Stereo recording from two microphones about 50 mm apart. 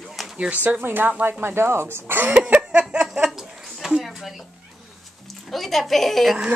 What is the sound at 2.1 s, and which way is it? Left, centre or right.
Speech, right.